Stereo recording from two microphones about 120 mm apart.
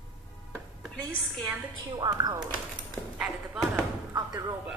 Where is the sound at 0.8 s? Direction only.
Centre (ahead or behind).